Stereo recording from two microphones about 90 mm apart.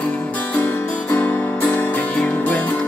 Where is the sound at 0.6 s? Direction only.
20° left (ahead or behind).